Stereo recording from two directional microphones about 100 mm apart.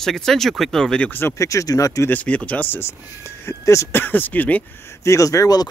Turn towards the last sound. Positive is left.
turn(degrees=35)  # may be behind; listen again after turning